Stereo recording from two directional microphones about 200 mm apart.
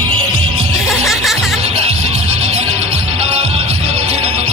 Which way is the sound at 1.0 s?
Centre (ahead or behind).